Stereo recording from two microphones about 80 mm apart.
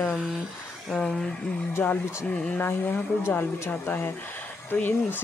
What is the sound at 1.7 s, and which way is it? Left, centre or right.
Speech, left.